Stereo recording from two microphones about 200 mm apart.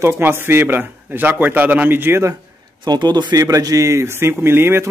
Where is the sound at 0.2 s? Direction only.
10° right (ahead or behind).